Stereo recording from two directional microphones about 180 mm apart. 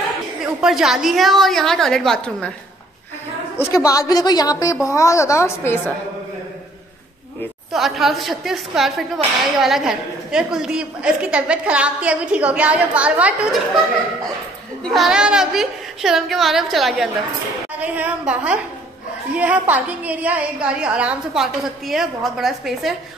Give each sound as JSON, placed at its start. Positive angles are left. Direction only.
{"t": 0.4, "sound": "speech", "side_deg": 0}
{"t": 3.5, "sound": "a woman's voice", "side_deg": 20}
{"t": 7.7, "sound": "speech", "side_deg": 0}
{"t": 14.8, "sound": "a woman's voice", "side_deg": 0}